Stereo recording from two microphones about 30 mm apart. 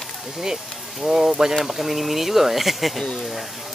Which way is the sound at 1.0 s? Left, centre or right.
Centre.